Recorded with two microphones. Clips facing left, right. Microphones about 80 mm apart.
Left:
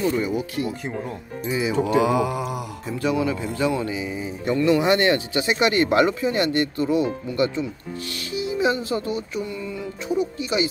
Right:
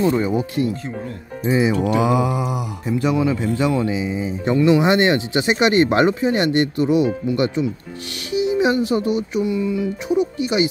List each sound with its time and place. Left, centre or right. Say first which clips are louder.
0.0 s speech: right 4 dB; right
1.4 s speech: right 7 dB; right
2.0 s mantra: right 2 dB; centre
3.8 s speech: right 5 dB; centre